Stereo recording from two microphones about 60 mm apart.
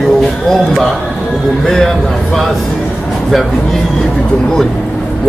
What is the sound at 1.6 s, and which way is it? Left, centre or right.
Speech, centre.